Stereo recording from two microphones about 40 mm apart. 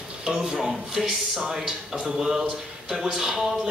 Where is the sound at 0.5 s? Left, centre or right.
Centre.